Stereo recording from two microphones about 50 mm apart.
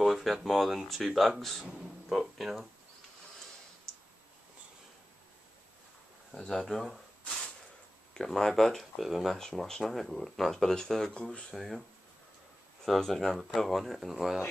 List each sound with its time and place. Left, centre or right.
0.0 s speech: centre
6.3 s speech: centre
9.4 s speech: centre
11.5 s speech: centre
12.8 s speech: centre